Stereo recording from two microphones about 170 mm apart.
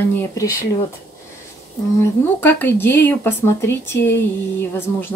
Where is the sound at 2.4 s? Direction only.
10° left (ahead or behind).